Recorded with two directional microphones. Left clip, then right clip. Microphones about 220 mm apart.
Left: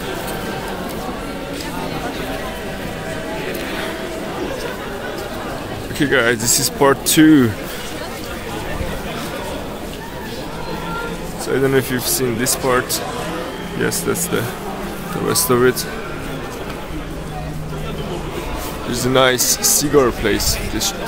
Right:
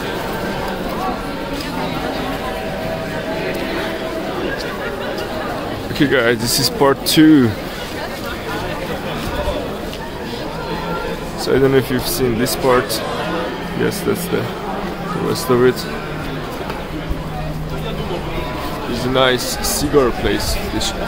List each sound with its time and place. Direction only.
5.9 s speech: 5° right (ahead or behind)
11.4 s speech: 5° right (ahead or behind)
15.5 s speech: 5° left (ahead or behind)
19.1 s a man's voice: 20° left (ahead or behind)